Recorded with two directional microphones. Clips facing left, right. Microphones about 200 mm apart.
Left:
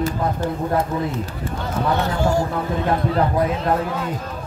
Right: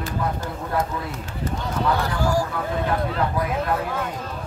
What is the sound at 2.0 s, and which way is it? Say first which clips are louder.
Speech: left 3 dB; 25° left (ahead or behind).